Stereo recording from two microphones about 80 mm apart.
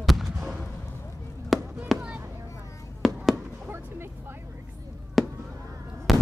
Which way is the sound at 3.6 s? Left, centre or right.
Right.